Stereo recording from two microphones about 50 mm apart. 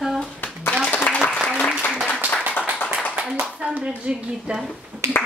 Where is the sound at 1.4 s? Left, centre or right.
Centre.